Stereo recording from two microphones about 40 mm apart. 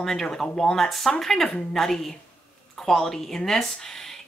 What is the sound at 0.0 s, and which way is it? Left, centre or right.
Speech, centre.